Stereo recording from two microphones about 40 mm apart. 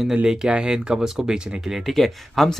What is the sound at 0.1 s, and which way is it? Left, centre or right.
Speech, centre.